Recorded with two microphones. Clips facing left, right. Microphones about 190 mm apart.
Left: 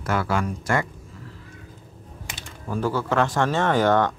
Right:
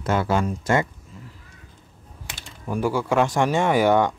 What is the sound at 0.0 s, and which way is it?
Speech, 25° right (ahead or behind).